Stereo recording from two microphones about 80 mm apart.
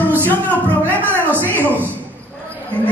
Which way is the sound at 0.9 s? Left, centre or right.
Right.